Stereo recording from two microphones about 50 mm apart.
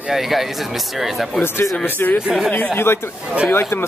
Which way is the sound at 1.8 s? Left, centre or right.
Left.